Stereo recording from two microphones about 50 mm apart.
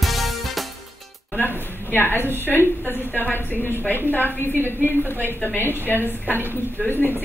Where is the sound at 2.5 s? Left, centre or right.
Left.